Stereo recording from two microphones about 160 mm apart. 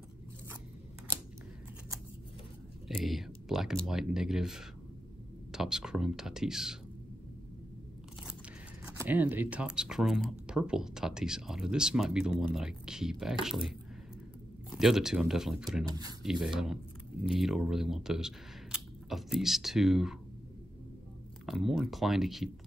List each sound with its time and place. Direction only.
2.9 s speech: centre (ahead or behind)
8.9 s speech: 10° right (ahead or behind)
15.8 s speech: 25° right (ahead or behind)
16.2 s speech: 5° right (ahead or behind)
21.5 s speech: centre (ahead or behind)